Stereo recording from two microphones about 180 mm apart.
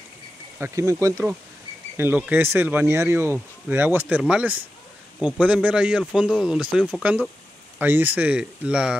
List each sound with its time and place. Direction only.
0.6 s speech: 15° right (ahead or behind)